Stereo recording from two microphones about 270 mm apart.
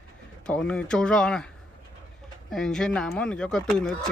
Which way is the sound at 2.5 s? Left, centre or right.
Centre.